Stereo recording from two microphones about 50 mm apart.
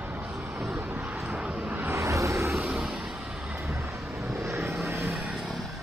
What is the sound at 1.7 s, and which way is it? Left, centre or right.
Vehicle, right.